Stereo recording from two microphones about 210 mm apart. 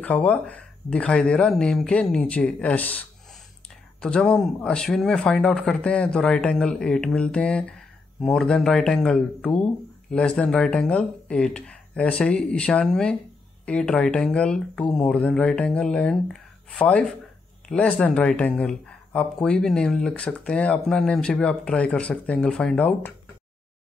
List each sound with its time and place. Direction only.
0.0 s speech: 5° left (ahead or behind)
4.0 s speech: 5° left (ahead or behind)